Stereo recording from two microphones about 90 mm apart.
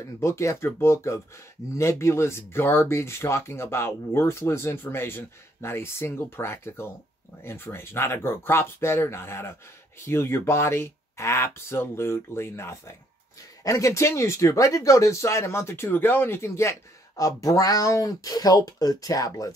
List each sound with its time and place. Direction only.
0.0 s speech: 30° left (ahead or behind)